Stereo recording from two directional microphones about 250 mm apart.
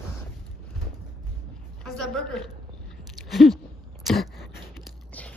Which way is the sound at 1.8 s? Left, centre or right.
Centre.